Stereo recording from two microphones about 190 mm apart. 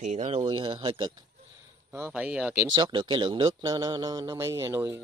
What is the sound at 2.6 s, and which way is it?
Speech, 20° right (ahead or behind).